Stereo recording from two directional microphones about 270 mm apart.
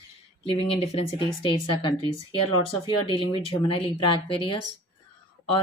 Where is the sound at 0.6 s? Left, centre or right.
Left.